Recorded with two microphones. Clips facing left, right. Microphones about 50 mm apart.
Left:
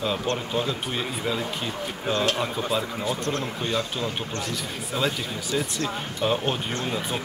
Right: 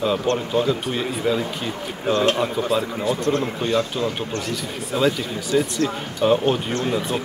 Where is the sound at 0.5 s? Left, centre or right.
Centre.